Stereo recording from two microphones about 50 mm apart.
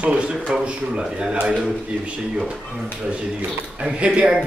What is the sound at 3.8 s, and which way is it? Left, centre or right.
Speech, centre.